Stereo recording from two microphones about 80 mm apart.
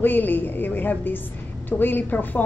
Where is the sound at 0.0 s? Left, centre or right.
Left.